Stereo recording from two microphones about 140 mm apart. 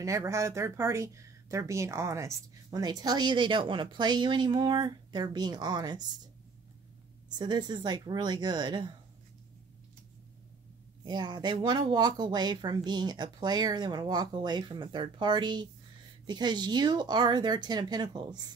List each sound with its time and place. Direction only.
0.0 s speech: 20° right (ahead or behind)
7.2 s speech: 30° right (ahead or behind)
11.1 s speech: 30° right (ahead or behind)